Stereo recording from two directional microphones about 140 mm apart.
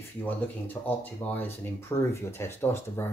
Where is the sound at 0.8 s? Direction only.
15° left (ahead or behind).